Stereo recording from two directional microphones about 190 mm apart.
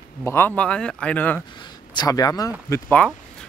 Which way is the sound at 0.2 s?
10° left (ahead or behind).